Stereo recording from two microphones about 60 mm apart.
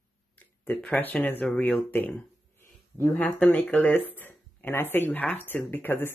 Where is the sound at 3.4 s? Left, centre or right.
Centre.